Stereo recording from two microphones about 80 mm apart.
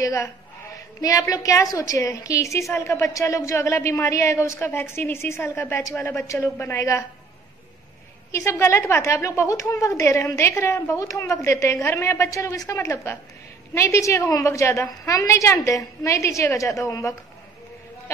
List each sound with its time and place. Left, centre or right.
0.0 s a woman's voice: left
8.3 s a woman's voice: left